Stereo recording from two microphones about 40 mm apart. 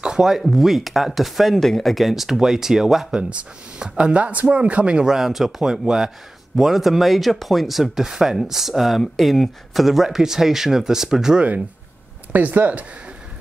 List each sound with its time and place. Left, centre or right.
0.0 s a sound: centre
0.4 s speech: centre
3.2 s speech: right
5.0 s speech: centre
5.6 s speech: centre
6.5 s speech: centre
12.3 s speech: right